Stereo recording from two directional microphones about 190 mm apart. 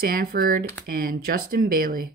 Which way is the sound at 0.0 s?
50° right (ahead or behind).